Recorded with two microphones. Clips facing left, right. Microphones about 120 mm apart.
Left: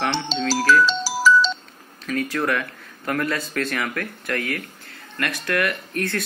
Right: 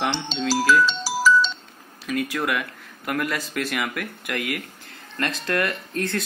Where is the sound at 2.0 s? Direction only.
15° right (ahead or behind).